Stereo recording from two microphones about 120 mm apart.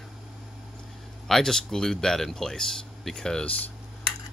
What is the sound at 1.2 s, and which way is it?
Speech, 5° left (ahead or behind).